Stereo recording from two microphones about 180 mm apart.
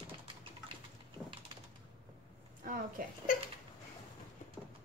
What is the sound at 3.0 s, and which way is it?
Speech, 50° right (ahead or behind).